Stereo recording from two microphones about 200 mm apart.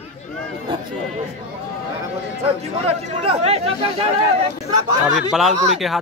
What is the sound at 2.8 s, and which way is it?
Speech, 30° right (ahead or behind).